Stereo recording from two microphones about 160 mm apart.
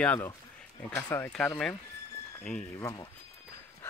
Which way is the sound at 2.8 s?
20° left (ahead or behind).